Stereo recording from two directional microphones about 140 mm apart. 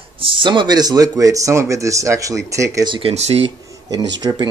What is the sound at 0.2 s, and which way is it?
Speech, 35° right (ahead or behind).